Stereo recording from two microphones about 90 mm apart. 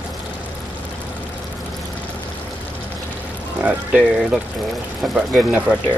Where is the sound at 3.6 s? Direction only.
10° right (ahead or behind).